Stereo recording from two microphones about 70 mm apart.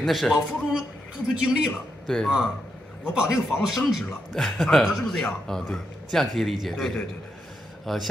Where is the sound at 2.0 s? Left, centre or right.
Centre.